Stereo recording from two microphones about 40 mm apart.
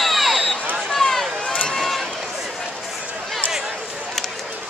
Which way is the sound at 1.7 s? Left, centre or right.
Centre.